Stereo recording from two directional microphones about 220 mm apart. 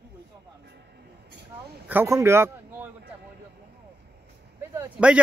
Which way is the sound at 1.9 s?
10° right (ahead or behind).